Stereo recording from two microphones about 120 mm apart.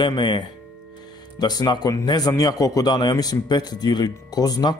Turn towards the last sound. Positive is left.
turn(degrees=30)  # may be behind; listen again after turning